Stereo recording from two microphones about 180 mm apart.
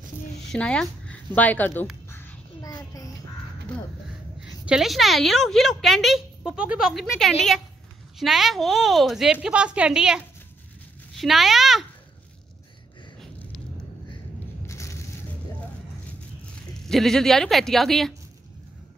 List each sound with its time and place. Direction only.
0.5 s a woman's voice: 5° left (ahead or behind)
2.0 s quack: 15° left (ahead or behind)
4.6 s speech: centre (ahead or behind)
14.7 s a sound: 15° left (ahead or behind)
16.8 s speech: centre (ahead or behind)